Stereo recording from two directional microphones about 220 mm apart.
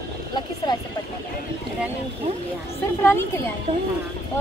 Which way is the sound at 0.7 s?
20° left (ahead or behind).